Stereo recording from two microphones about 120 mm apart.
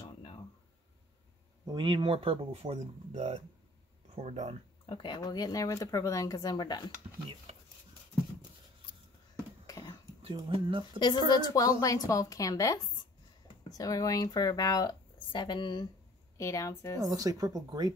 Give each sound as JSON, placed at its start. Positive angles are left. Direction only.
{"t": 1.7, "sound": "speech", "side_deg": -40}
{"t": 3.1, "sound": "speech", "side_deg": -65}
{"t": 4.8, "sound": "speech", "side_deg": 45}
{"t": 9.7, "sound": "a sound", "side_deg": 30}
{"t": 10.3, "sound": "speech", "side_deg": -40}
{"t": 11.2, "sound": "speech", "side_deg": 30}
{"t": 16.3, "sound": "speech", "side_deg": 25}
{"t": 17.0, "sound": "speech", "side_deg": -30}